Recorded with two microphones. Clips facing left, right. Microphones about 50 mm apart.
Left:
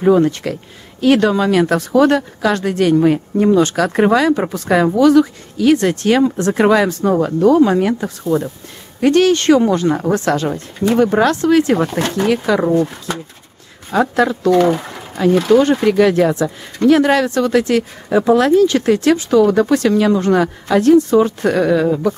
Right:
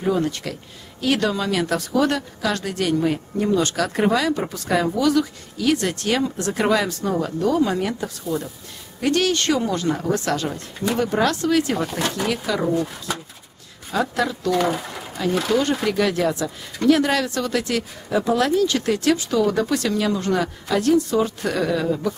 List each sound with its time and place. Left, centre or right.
0.0 s speech: left
13.9 s speech: left
14.5 s speech: centre
15.9 s speech: left